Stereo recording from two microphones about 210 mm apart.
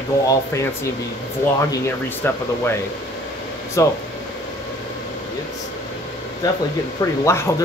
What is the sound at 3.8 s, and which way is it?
Speech, 15° left (ahead or behind).